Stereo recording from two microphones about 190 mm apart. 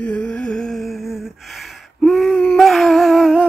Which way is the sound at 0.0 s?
5° left (ahead or behind).